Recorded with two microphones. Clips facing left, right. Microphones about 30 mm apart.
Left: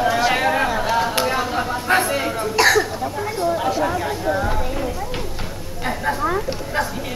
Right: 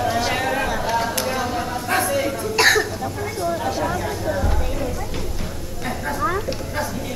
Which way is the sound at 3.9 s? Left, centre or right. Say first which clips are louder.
Left 2 dB; left.